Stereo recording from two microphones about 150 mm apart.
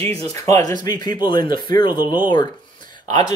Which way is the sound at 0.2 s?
20° left (ahead or behind).